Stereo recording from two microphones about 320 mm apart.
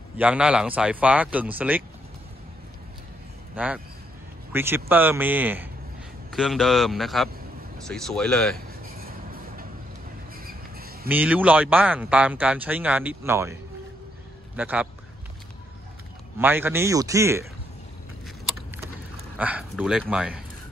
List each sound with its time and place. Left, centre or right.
0.2 s speech: centre
3.5 s speech: centre
8.9 s train: right
11.1 s speech: centre
14.6 s speech: centre
16.3 s a man's voice: centre
19.3 s speech: centre